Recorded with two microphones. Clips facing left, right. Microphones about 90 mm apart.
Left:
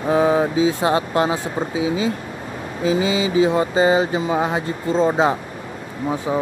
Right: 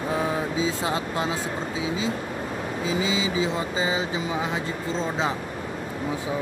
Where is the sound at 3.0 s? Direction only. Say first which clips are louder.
Left 8 dB; 60° left (ahead or behind).